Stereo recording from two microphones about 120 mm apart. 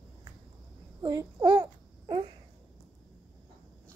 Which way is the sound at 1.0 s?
35° right (ahead or behind).